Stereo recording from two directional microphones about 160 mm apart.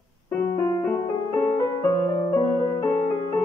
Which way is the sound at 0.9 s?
15° left (ahead or behind).